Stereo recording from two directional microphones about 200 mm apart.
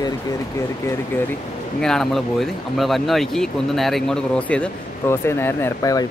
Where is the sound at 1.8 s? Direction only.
Centre (ahead or behind).